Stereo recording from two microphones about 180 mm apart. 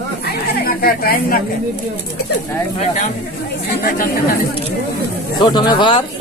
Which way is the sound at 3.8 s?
55° left (ahead or behind).